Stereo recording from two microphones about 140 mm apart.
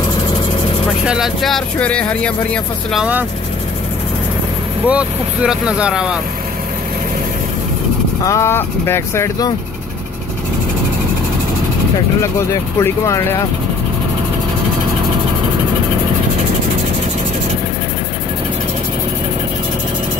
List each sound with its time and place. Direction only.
1.0 s speech: 5° right (ahead or behind)
3.0 s speech: 10° right (ahead or behind)
4.8 s speech: 10° right (ahead or behind)
8.2 s speech: 20° left (ahead or behind)
12.2 s speech: 20° left (ahead or behind)